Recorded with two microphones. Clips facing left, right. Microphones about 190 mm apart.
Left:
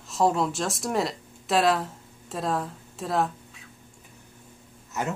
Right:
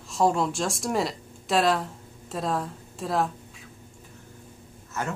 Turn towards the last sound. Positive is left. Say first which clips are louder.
# left 2 dB
turn(degrees=15)  # may be behind; listen again after turning